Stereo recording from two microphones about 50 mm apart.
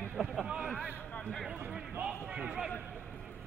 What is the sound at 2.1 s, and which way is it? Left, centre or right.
Speech, right.